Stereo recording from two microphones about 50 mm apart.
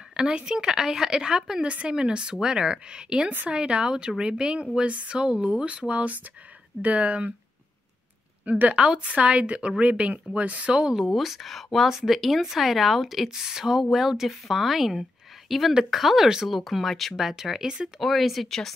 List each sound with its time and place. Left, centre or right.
0.1 s a woman's voice: centre
8.5 s speech: right
8.7 s speech: centre
11.1 s a woman's voice: centre
18.0 s speech: centre